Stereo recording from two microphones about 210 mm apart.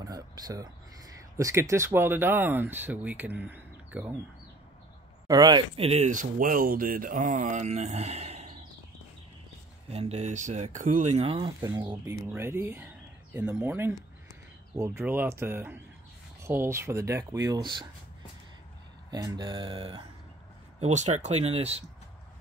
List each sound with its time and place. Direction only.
0.0 s speech: 20° right (ahead or behind)
5.3 s speech: 20° right (ahead or behind)
9.8 s speech: 30° right (ahead or behind)
11.7 s speech: 15° right (ahead or behind)
19.0 s speech: 20° right (ahead or behind)